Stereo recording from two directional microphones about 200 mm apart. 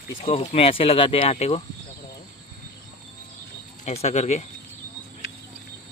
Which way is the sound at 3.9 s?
35° left (ahead or behind).